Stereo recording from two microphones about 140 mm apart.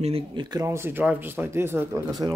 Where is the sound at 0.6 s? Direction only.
15° right (ahead or behind).